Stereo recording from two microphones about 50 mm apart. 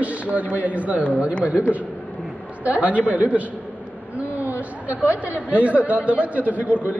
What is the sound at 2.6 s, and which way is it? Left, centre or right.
Speech, right.